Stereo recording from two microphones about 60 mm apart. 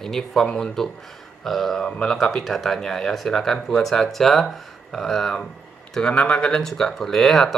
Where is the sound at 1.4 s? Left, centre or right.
Centre.